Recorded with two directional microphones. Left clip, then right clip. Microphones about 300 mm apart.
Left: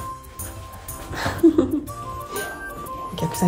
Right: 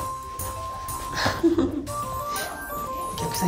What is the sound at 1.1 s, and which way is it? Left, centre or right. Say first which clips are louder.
Music: left 4 dB; centre.